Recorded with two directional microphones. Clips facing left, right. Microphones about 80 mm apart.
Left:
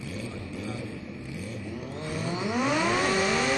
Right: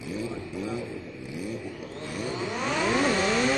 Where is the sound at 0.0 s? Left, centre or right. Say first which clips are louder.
Right 4 dB; centre.